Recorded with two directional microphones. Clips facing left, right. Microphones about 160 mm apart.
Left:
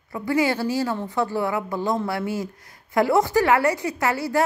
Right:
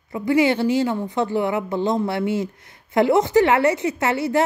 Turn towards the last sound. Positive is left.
turn(degrees=-25)  # may be behind; listen again after turning